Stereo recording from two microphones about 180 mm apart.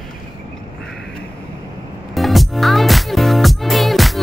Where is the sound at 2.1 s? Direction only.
Centre (ahead or behind).